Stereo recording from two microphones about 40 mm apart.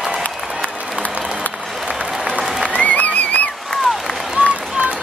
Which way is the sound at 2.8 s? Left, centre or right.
Left.